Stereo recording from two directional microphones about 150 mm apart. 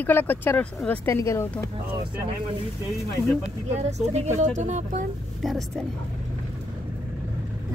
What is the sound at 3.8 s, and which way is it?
Speech, 50° right (ahead or behind).